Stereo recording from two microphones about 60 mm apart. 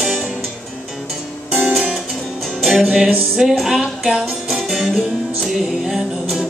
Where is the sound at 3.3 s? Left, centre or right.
Centre.